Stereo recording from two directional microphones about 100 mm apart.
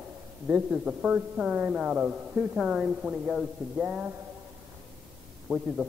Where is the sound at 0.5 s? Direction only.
15° right (ahead or behind).